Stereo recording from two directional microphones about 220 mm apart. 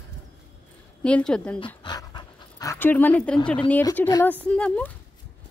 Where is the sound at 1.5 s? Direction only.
20° left (ahead or behind); by 3.4 s 5° left (ahead or behind).